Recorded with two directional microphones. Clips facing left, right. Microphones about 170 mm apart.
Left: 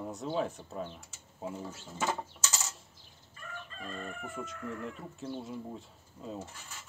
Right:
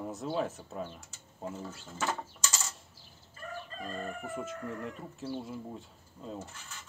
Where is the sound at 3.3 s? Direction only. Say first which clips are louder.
Right 4 dB; 35° right (ahead or behind).